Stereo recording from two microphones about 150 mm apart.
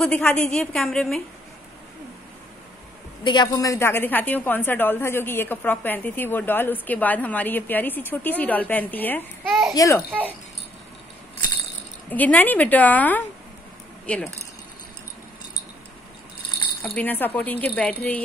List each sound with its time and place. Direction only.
0.0 s a woman's voice: 10° left (ahead or behind)
3.3 s a woman's voice: 25° left (ahead or behind); by 9.5 s 10° left (ahead or behind)
9.5 s speech: centre (ahead or behind)
9.8 s a child's voice: 20° left (ahead or behind)
12.1 s a woman's voice: 10° left (ahead or behind)
16.8 s a woman's voice: 10° left (ahead or behind)